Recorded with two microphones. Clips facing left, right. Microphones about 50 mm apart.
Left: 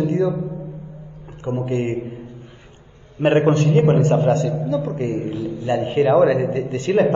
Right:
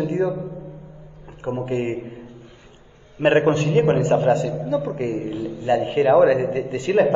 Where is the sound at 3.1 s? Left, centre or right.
Right.